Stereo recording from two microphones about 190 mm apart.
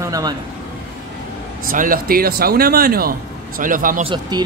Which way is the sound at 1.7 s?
45° right (ahead or behind).